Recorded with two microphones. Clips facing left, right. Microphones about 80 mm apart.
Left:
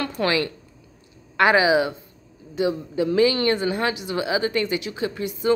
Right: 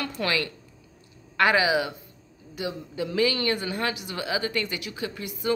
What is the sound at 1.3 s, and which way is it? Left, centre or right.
A woman's voice, left.